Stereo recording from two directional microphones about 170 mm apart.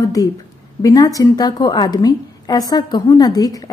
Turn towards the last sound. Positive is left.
turn(degrees=20)  # may be behind; listen again after turning